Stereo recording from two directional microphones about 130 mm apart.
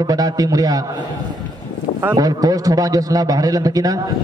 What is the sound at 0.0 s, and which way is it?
A man's voice, 30° right (ahead or behind).